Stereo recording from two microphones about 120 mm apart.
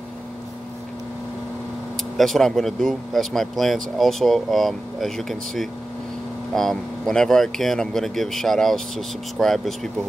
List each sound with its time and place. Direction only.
2.1 s speech: centre (ahead or behind)